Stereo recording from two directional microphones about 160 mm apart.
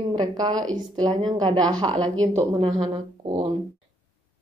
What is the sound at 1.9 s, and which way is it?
Speech, 5° left (ahead or behind).